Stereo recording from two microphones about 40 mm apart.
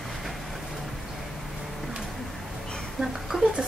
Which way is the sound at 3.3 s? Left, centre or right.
Centre.